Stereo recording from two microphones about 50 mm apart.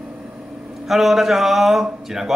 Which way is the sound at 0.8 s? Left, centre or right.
Centre.